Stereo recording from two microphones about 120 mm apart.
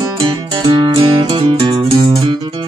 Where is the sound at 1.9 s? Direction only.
30° right (ahead or behind).